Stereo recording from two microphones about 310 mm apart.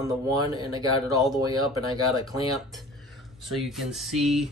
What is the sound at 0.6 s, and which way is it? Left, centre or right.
Speech, centre.